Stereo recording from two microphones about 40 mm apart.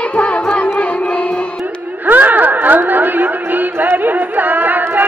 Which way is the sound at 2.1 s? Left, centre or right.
Right.